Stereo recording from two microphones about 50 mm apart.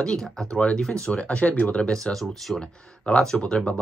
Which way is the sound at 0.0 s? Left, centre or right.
Centre.